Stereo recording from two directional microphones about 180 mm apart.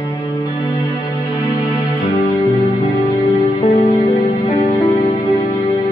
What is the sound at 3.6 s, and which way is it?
Music, 40° left (ahead or behind).